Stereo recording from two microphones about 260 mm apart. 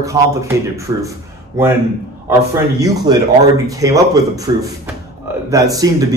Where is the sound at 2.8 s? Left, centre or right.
Centre.